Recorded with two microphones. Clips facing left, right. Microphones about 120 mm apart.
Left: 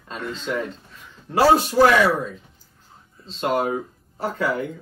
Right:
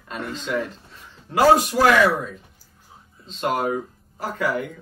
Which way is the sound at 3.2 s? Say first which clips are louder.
Left 1 dB; 35° left (ahead or behind).